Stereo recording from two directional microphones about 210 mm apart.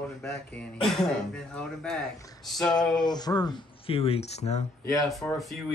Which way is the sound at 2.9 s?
20° left (ahead or behind).